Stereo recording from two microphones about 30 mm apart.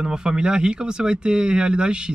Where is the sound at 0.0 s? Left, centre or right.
Right.